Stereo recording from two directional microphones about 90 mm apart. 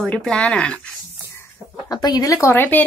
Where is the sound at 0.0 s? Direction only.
5° left (ahead or behind).